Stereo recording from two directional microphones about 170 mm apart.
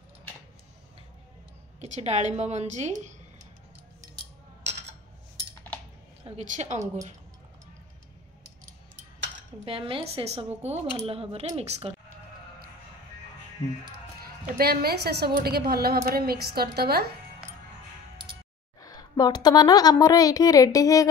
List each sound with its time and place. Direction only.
1.8 s speech: 40° right (ahead or behind)
6.2 s a woman's voice: 45° right (ahead or behind)
9.7 s speech: 35° right (ahead or behind)
14.2 s a woman's voice: 65° right (ahead or behind)
18.8 s a woman's voice: 20° left (ahead or behind)